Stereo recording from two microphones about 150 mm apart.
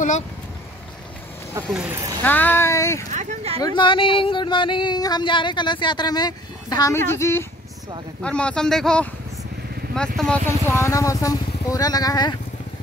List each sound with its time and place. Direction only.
1.7 s speech: 5° right (ahead or behind)
2.2 s speech: 10° left (ahead or behind)
3.1 s speech: 50° right (ahead or behind)
3.6 s speech: 35° left (ahead or behind); by 10.4 s 5° left (ahead or behind)
10.4 s speech: 15° left (ahead or behind)